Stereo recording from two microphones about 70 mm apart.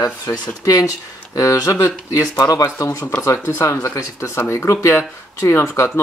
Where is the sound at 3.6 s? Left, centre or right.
Left.